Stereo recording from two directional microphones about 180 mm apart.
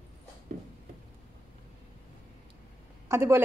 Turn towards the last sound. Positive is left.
turn(degrees=-15)  # may be behind; listen again after turning